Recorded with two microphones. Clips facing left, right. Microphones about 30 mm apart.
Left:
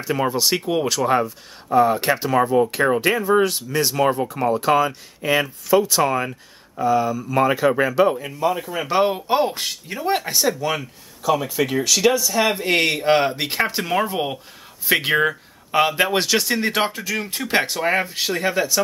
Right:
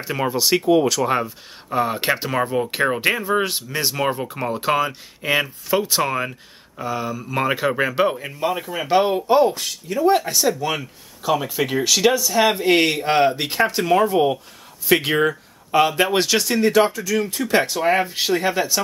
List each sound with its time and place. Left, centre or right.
0.1 s speech: centre
1.2 s speech: centre
2.3 s speech: centre
8.6 s speech: centre
9.5 s speech: left
10.0 s speech: centre
16.6 s speech: left
17.7 s speech: centre